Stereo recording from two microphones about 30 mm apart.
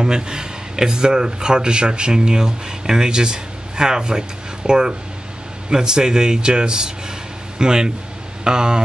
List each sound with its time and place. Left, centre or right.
0.0 s speech: right